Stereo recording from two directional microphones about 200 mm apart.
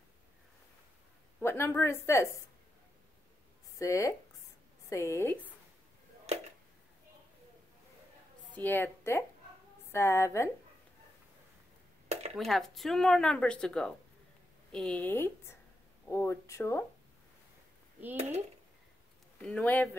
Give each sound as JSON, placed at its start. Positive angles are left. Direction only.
{"t": 1.4, "sound": "a woman's voice", "side_deg": 10}
{"t": 3.7, "sound": "a woman's voice", "side_deg": 15}
{"t": 6.3, "sound": "a sound", "side_deg": -30}
{"t": 8.5, "sound": "a woman's voice", "side_deg": 10}
{"t": 12.4, "sound": "a woman's voice", "side_deg": 0}
{"t": 19.4, "sound": "a woman's voice", "side_deg": 5}